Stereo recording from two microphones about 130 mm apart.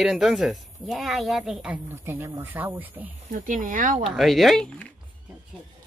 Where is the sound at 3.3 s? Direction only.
90° right.